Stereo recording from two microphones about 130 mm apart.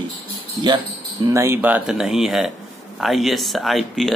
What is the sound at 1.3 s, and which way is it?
Speech, 20° right (ahead or behind).